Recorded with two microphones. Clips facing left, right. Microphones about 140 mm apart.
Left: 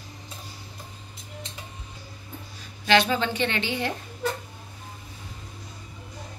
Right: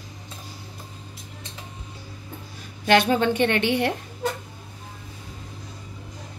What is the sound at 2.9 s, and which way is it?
A woman's voice, 50° right (ahead or behind).